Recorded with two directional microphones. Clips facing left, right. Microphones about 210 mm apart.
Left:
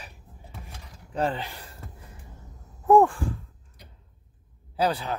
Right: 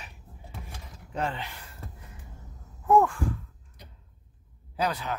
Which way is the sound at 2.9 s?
30° left (ahead or behind).